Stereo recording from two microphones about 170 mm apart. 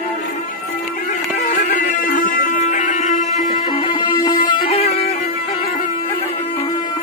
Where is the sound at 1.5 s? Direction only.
50° left (ahead or behind).